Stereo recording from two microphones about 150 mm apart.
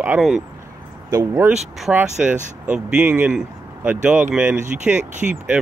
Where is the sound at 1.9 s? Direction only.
10° right (ahead or behind).